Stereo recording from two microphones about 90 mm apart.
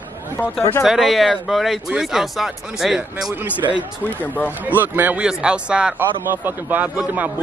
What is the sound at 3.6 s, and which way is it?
Speech, 45° right (ahead or behind).